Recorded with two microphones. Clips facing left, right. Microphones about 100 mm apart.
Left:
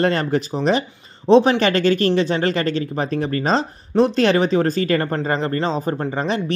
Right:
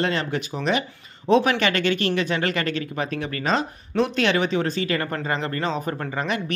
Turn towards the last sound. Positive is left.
turn(degrees=30)  # may be behind; listen again after turning